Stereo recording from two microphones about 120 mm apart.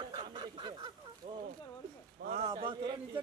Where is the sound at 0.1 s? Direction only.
40° right (ahead or behind).